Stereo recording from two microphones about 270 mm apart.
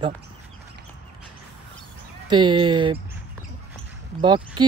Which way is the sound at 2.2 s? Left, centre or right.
Centre.